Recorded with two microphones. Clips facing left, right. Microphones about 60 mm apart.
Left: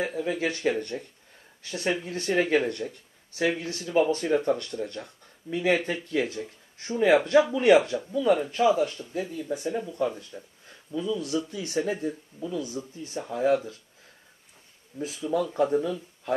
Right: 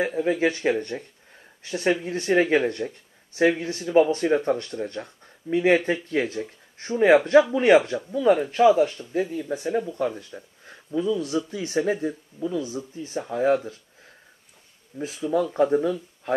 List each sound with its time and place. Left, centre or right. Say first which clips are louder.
0.0 s speech: right 5 dB; right
15.0 s speech: right 3 dB; right